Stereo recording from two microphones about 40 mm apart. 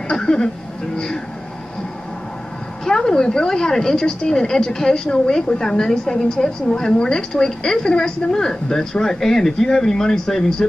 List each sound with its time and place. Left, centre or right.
0.1 s a woman's voice: centre
2.8 s a woman's voice: centre